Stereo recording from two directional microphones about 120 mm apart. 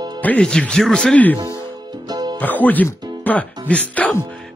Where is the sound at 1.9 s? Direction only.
35° right (ahead or behind).